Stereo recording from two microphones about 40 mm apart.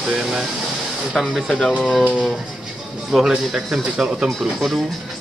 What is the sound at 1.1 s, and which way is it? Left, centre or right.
Speech, centre.